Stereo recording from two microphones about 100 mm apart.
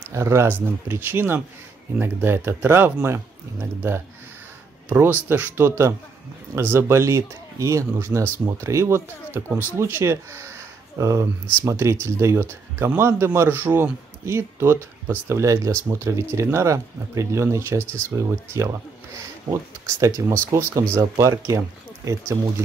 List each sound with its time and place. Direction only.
0.1 s a man's voice: 30° right (ahead or behind)
4.8 s a man's voice: 20° right (ahead or behind)